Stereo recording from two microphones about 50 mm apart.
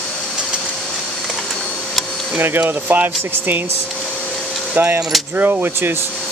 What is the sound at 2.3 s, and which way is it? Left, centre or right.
Speech, right.